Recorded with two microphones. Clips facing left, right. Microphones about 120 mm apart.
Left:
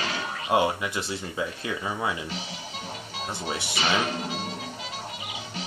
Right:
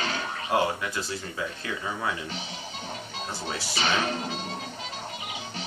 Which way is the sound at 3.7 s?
30° right (ahead or behind).